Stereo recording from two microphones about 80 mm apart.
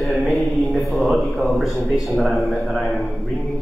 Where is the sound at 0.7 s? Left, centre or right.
Centre.